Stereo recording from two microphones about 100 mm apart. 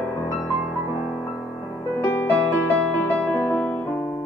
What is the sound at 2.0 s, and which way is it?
Music, 20° left (ahead or behind).